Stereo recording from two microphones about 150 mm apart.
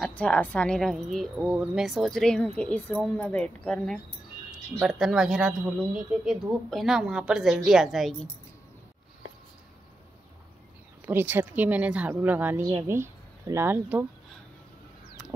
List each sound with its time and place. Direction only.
0.0 s a woman's voice: 10° left (ahead or behind)
4.5 s a woman's voice: 5° right (ahead or behind)
11.1 s speech: 15° right (ahead or behind)